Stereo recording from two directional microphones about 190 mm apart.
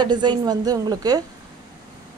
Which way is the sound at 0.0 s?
25° right (ahead or behind).